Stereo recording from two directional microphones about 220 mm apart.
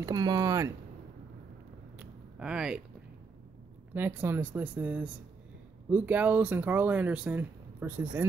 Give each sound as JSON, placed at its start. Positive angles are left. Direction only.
{"t": 0.0, "sound": "speech", "side_deg": -15}
{"t": 2.0, "sound": "a sound", "side_deg": -5}
{"t": 3.9, "sound": "speech", "side_deg": -10}